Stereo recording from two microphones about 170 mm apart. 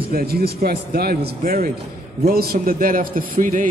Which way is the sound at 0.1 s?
65° right (ahead or behind).